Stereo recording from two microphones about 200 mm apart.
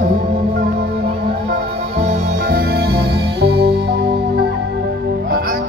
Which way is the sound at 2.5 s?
55° right (ahead or behind).